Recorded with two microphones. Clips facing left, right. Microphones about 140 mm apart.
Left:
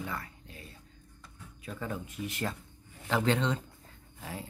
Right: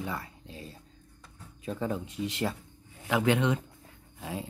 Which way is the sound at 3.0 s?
10° right (ahead or behind).